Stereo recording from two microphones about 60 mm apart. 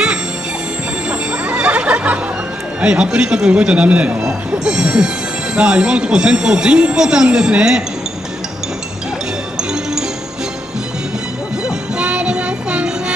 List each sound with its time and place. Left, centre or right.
1.4 s music: right
2.8 s a man's voice: centre
9.6 s music: centre
11.6 s music: centre